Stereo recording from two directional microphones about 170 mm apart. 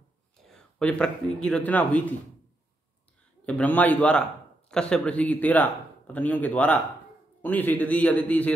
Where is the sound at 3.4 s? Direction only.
10° left (ahead or behind).